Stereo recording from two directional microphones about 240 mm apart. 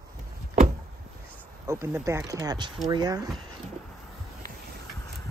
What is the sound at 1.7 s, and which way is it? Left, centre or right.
Speech, centre.